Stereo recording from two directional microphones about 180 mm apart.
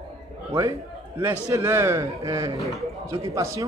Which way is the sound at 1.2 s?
15° right (ahead or behind).